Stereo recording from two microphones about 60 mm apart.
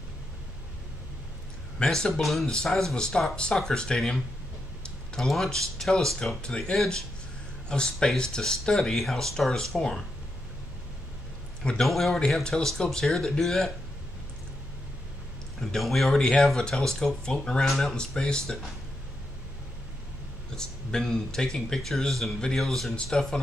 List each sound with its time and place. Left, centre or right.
1.8 s speech: centre
11.8 s speech: centre
15.6 s speech: centre
20.5 s speech: centre